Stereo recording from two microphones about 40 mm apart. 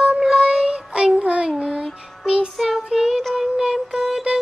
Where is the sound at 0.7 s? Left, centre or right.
Right.